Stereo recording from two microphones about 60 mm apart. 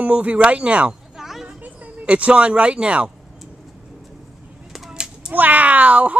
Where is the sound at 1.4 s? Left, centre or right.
Right.